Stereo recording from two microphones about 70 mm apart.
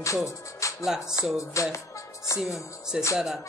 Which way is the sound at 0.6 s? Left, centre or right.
Left.